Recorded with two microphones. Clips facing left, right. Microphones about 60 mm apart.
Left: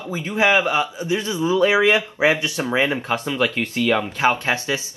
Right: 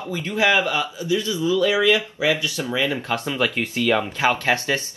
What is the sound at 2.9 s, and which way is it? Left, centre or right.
Speech, centre.